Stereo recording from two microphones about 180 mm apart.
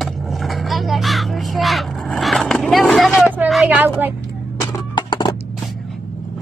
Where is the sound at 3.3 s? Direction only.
5° right (ahead or behind).